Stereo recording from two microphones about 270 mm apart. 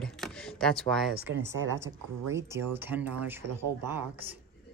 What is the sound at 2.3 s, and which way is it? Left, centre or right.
Speech, centre.